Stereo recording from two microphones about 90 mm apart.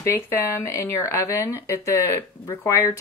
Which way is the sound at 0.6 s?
35° left (ahead or behind).